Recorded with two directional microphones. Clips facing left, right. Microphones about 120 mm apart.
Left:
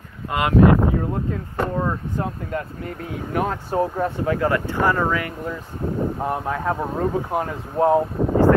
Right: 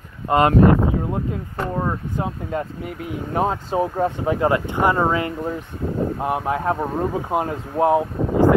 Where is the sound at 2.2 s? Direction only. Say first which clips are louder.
Right 1 dB; 15° right (ahead or behind).